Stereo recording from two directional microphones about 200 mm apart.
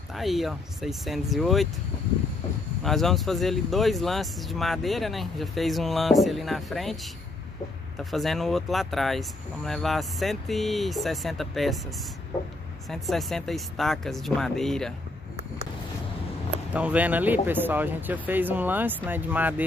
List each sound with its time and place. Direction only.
0.1 s speech: centre (ahead or behind)
2.8 s speech: centre (ahead or behind)
8.0 s speech: centre (ahead or behind)
12.9 s speech: centre (ahead or behind)
16.7 s speech: 5° right (ahead or behind)